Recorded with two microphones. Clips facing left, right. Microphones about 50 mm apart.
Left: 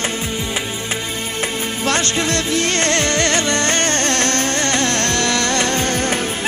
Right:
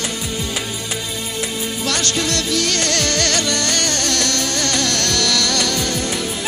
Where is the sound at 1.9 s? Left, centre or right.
Left.